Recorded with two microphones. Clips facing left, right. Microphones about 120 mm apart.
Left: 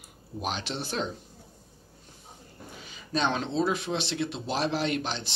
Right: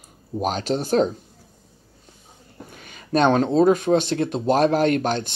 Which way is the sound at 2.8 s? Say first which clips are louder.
Right 10 dB; 55° right (ahead or behind).